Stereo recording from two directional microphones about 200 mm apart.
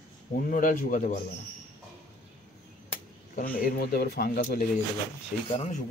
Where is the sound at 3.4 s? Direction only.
45° left (ahead or behind).